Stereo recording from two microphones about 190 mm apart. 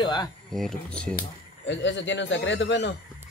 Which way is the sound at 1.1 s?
70° left (ahead or behind).